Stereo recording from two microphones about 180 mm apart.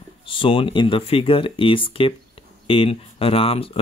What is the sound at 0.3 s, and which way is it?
Speech, 30° left (ahead or behind).